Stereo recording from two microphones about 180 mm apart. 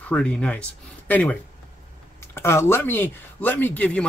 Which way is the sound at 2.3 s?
15° left (ahead or behind).